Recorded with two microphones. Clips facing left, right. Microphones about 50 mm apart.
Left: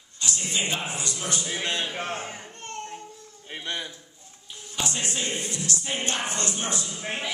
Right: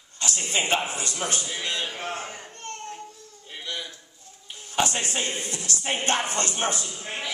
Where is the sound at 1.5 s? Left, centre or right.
Left.